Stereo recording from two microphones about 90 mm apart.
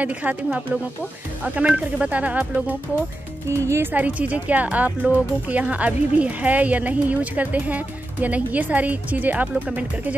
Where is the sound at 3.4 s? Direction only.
30° right (ahead or behind).